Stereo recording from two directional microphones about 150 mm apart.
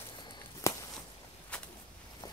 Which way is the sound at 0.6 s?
20° left (ahead or behind).